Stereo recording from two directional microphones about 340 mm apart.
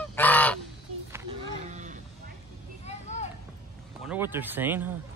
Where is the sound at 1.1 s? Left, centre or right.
Centre.